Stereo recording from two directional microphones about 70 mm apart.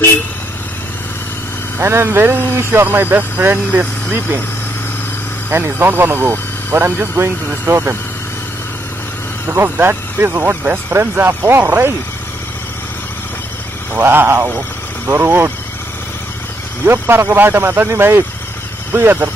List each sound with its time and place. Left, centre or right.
1.8 s speech: right
5.5 s speech: right
9.5 s speech: right
13.9 s speech: right
16.8 s speech: right